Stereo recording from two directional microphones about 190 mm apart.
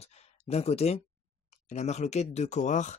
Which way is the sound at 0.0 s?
35° left (ahead or behind).